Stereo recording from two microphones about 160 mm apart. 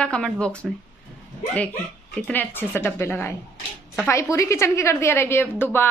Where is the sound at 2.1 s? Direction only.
10° left (ahead or behind).